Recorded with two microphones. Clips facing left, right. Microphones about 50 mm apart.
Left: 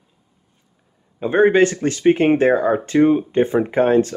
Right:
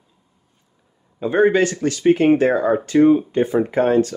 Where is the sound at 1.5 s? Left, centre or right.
Left.